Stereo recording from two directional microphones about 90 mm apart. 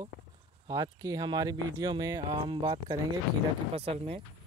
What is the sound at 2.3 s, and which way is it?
Speech, 65° right (ahead or behind).